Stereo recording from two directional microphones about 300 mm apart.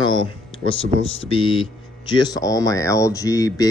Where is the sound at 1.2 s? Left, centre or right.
Centre.